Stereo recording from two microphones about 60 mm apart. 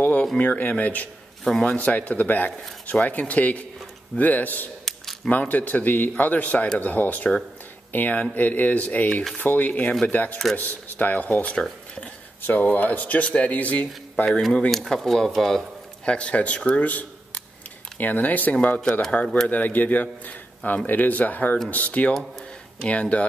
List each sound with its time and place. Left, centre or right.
0.0 s a sound: left
0.4 s a man's voice: left
1.4 s speech: centre
1.8 s a man's voice: left
4.8 s camera: centre
5.3 s a man's voice: left
14.7 s speech: centre
16.1 s a man's voice: centre
19.2 s speech: centre
19.5 s a man's voice: left